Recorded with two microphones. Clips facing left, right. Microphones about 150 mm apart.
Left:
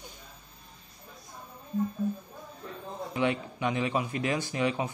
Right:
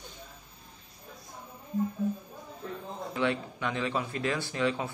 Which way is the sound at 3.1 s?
15° left (ahead or behind).